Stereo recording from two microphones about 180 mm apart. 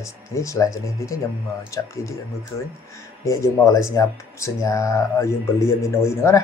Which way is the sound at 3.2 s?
15° left (ahead or behind).